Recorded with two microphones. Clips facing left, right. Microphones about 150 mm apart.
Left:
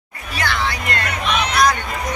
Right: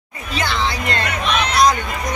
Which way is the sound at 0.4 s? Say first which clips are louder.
Right 1 dB; 25° right (ahead or behind).